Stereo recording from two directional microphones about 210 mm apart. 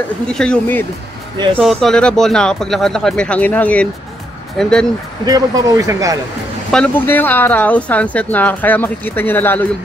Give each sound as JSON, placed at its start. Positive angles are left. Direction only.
{"t": 0.3, "sound": "speech", "side_deg": 5}
{"t": 5.2, "sound": "speech", "side_deg": -15}
{"t": 6.7, "sound": "speech", "side_deg": 5}